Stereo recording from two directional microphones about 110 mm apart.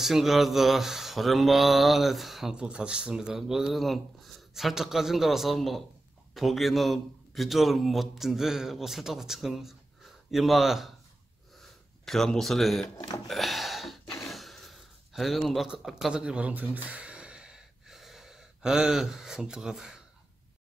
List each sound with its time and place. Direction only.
0.0 s speech: centre (ahead or behind)
12.0 s speech: centre (ahead or behind)
12.9 s speech: 35° left (ahead or behind)
13.3 s gasp: centre (ahead or behind)
14.3 s a sound: centre (ahead or behind)